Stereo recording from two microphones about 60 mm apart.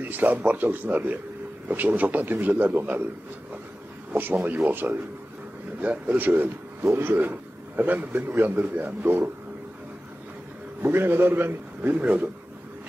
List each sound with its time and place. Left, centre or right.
0.0 s a man's voice: right
4.1 s a man's voice: right
10.8 s a man's voice: right
11.9 s speech: right